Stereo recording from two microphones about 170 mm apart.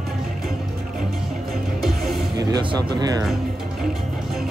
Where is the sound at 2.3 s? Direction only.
25° right (ahead or behind).